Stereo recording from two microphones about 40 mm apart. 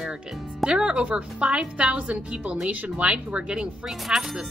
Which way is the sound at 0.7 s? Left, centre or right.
Right.